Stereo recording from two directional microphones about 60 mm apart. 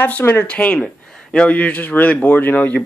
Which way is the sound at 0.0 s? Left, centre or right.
Left.